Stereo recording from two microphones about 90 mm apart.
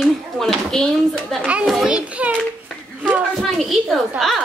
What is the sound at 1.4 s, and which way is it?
Speech, 10° right (ahead or behind).